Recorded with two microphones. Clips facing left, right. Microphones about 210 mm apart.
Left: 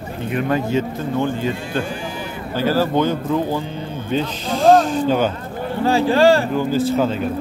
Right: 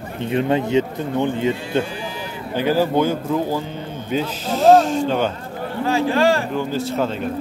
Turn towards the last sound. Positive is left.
turn(degrees=0)  # may be behind; listen again after turning